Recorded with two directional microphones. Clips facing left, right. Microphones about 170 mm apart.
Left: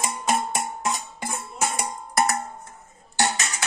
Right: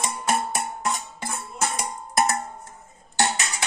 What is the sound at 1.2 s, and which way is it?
Music, 15° left (ahead or behind).